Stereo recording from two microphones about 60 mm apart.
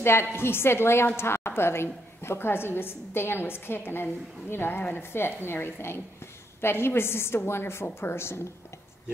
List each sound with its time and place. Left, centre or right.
0.0 s a woman's voice: left